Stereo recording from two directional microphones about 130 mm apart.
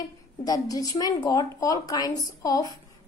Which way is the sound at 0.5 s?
30° left (ahead or behind).